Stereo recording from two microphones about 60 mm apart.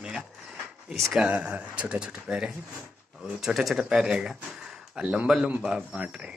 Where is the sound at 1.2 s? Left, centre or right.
Right.